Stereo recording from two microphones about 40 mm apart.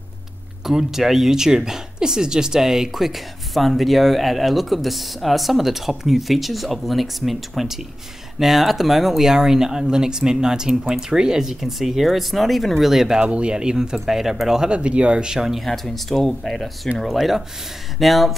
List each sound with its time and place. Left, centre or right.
0.7 s speech: centre
12.9 s speech: centre
13.2 s speech: right; by 14.7 s centre
14.7 s speech: right
15.3 s speech: centre
15.6 s speech: centre